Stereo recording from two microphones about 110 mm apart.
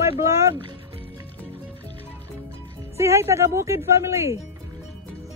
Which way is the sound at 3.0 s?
25° right (ahead or behind).